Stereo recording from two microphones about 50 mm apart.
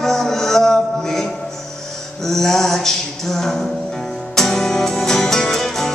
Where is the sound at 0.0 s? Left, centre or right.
Centre.